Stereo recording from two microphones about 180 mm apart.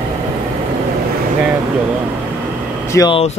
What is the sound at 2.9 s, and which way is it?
Speech, 25° left (ahead or behind).